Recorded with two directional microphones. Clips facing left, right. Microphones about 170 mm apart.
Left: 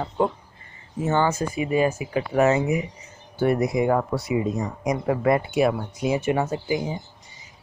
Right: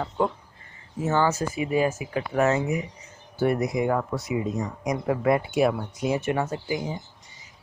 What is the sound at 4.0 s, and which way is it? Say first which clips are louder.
Speech: left 3 dB; 25° left (ahead or behind).